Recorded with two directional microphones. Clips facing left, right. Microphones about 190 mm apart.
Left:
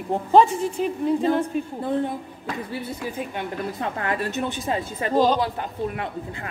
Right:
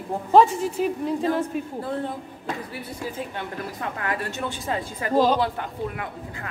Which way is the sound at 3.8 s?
25° left (ahead or behind).